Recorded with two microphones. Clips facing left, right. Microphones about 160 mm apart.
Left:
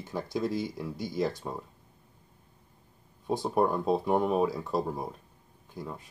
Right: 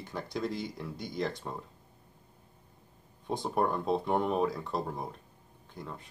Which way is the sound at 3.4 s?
10° left (ahead or behind).